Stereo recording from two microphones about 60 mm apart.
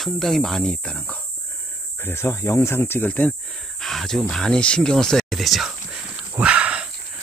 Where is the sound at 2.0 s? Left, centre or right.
Left.